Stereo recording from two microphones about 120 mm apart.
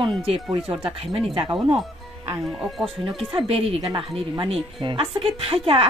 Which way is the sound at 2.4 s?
Centre (ahead or behind).